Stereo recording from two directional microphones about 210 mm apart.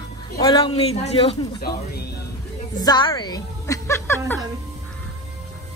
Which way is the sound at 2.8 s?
20° left (ahead or behind).